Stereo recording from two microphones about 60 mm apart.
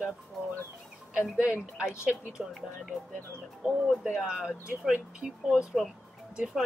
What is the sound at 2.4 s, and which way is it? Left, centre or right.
Speech, centre.